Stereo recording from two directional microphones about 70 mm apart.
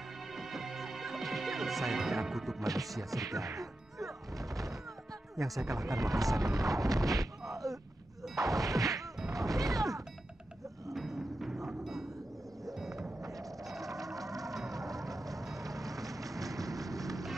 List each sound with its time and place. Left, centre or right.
0.4 s music: centre
2.6 s speech: right
2.9 s music: centre
3.2 s speech: right
4.4 s music: right
5.7 s speech: right
7.5 s a sound: right
8.4 s whack: right
9.3 s smash: right
10.9 s music: centre
12.6 s vehicle: centre
14.0 s music: right
15.5 s vehicle: right